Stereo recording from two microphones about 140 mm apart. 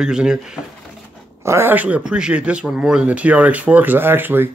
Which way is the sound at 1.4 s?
15° right (ahead or behind).